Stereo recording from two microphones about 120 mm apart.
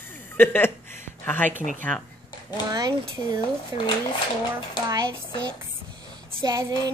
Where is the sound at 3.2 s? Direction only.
60° left (ahead or behind).